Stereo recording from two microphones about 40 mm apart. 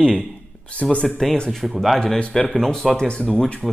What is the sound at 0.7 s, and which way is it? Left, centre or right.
Speech, left.